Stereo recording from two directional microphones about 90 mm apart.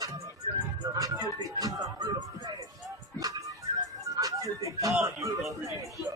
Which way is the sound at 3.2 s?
40° right (ahead or behind).